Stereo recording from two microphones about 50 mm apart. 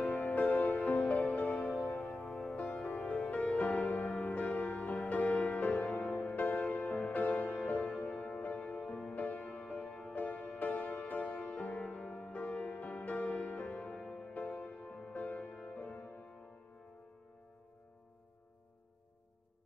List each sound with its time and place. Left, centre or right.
0.2 s music: left; by 14.3 s centre
14.3 s music: left